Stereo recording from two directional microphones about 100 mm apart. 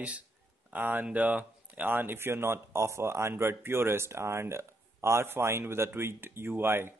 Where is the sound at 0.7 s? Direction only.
20° right (ahead or behind).